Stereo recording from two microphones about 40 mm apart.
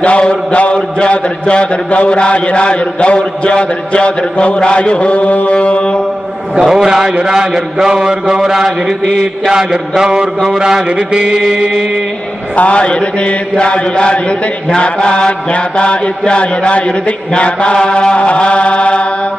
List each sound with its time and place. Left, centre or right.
0.0 s a man's voice: left
6.6 s a man's voice: centre
9.9 s a man's voice: centre
11.0 s mantra: right
12.5 s a man's voice: left